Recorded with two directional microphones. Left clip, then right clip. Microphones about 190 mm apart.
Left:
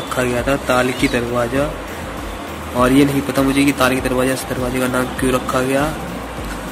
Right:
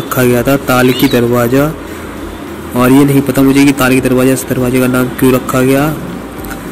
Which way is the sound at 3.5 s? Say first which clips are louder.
Right 5 dB; 15° right (ahead or behind).